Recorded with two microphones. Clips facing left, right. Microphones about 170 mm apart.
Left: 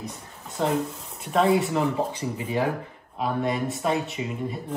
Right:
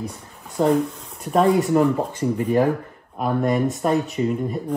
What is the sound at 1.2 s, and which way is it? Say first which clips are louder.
Speech: right 3 dB; 40° right (ahead or behind).